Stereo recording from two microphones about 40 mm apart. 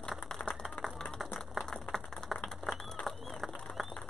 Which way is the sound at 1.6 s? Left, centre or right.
Centre.